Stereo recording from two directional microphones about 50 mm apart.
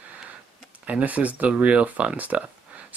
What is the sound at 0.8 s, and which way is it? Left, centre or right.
Speech, right.